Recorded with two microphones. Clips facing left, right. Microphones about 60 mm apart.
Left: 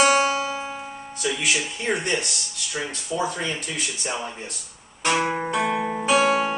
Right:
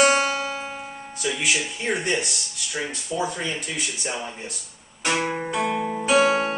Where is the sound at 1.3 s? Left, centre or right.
Centre.